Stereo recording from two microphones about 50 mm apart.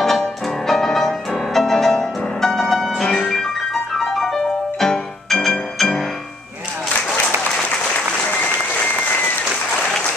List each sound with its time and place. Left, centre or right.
0.0 s music: centre
7.9 s applause: left